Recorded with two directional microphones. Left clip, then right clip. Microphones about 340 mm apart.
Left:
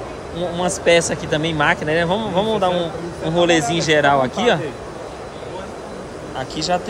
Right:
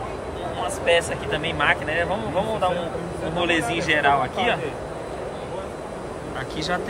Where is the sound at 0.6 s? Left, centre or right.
Centre.